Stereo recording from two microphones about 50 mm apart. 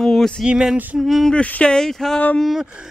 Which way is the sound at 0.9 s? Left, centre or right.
Centre.